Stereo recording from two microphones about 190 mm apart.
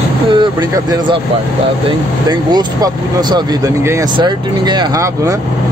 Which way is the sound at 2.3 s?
20° right (ahead or behind).